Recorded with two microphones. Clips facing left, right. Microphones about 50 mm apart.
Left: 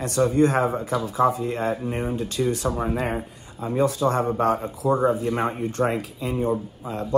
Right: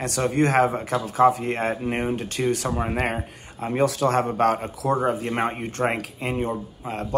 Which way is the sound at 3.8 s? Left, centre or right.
Right.